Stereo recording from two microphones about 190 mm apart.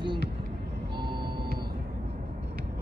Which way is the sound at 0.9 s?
25° right (ahead or behind).